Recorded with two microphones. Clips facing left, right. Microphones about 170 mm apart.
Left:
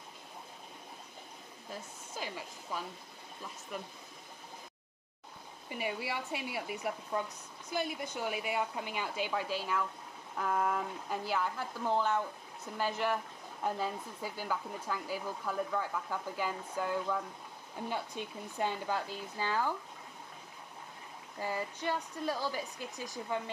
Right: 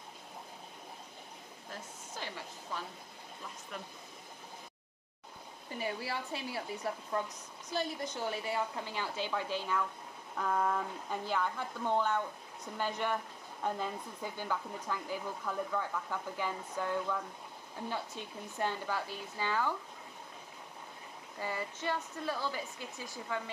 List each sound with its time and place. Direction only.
1.7 s speech: 10° left (ahead or behind)
5.7 s speech: 15° left (ahead or behind)
21.4 s speech: 15° left (ahead or behind)